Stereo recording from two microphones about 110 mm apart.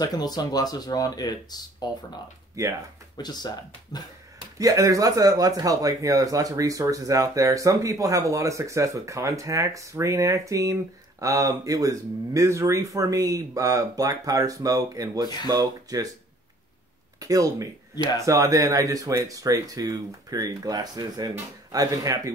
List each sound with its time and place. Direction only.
0.0 s speech: 40° left (ahead or behind)
2.6 s speech: 30° right (ahead or behind)
3.2 s speech: 40° left (ahead or behind)
4.6 s speech: 30° right (ahead or behind)
17.2 s speech: 30° right (ahead or behind)